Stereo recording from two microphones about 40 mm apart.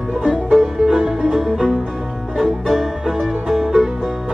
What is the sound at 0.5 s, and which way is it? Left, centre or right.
Music, centre.